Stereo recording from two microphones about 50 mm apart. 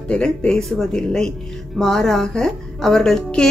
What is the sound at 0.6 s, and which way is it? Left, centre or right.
Speech, centre.